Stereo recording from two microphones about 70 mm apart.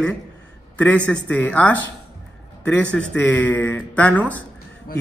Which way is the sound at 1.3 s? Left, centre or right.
Left.